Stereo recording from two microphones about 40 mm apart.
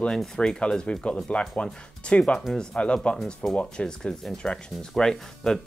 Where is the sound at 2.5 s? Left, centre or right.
Centre.